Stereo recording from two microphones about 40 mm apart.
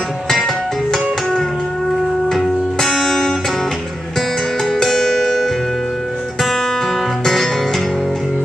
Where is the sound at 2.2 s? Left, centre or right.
Centre.